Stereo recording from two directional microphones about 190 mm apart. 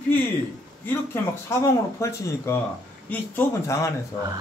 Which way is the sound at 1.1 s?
15° left (ahead or behind).